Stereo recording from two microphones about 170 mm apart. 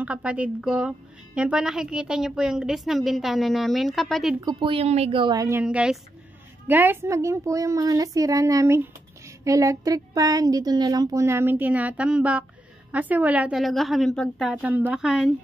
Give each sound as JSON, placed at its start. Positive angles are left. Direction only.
{"t": 0.0, "sound": "a woman's voice", "side_deg": -5}
{"t": 4.4, "sound": "a woman's voice", "side_deg": -25}